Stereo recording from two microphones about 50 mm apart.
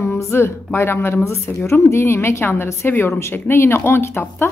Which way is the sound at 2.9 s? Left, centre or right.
Left.